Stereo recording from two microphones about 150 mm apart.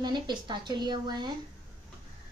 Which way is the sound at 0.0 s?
30° right (ahead or behind).